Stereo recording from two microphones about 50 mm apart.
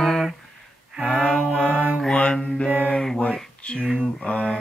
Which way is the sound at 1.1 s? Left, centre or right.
Centre.